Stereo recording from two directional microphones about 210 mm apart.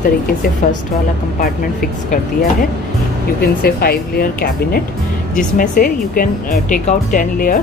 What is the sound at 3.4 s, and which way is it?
Speech, 50° left (ahead or behind).